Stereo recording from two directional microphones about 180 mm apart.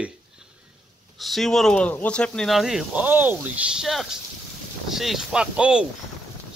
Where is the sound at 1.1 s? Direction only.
Centre (ahead or behind).